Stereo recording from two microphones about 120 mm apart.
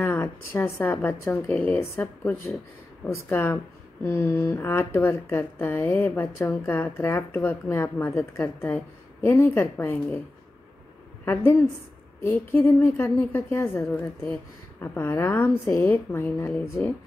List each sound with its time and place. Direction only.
0.0 s a woman's voice: 20° left (ahead or behind)
11.2 s a woman's voice: 15° left (ahead or behind)